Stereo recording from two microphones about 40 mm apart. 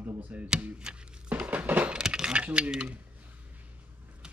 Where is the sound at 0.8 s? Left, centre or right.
Right.